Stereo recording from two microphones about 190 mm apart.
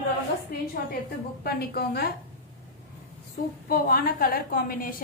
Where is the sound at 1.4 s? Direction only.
55° left (ahead or behind).